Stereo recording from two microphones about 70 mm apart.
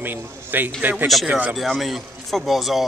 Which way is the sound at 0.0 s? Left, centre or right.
Right.